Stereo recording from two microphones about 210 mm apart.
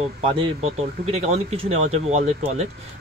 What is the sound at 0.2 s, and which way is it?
Speech, 30° right (ahead or behind).